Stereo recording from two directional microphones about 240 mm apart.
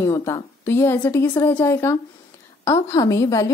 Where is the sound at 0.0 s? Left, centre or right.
Centre.